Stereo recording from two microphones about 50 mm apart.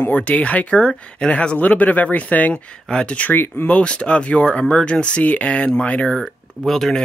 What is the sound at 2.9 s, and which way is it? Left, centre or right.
Speech, centre.